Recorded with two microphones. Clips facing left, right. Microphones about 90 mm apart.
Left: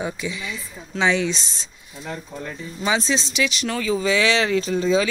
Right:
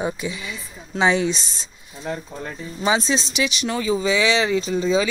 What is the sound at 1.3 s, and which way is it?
Speech, 5° right (ahead or behind).